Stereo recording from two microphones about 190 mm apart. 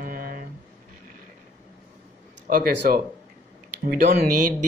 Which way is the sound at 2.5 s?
50° right (ahead or behind).